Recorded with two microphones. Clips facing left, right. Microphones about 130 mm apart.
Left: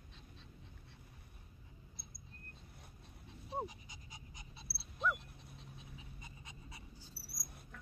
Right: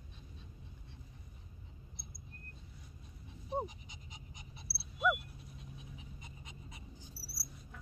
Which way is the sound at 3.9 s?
20° right (ahead or behind).